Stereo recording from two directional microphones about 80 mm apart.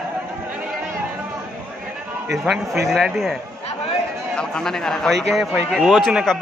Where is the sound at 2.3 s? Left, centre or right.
Centre.